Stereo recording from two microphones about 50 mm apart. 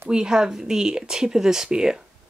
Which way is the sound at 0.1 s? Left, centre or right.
Centre.